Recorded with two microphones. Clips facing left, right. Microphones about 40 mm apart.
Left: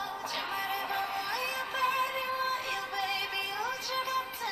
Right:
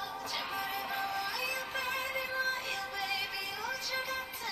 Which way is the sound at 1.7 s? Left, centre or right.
Left.